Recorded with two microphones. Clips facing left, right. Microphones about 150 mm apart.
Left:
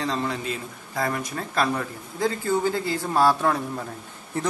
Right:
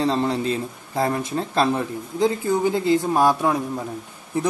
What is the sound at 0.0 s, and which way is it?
A man's voice, 30° right (ahead or behind).